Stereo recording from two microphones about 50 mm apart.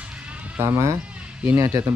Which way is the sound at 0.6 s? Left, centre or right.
Right.